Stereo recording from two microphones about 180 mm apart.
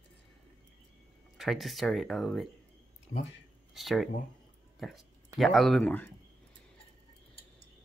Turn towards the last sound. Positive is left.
turn(degrees=10)  # may be behind; listen again after turning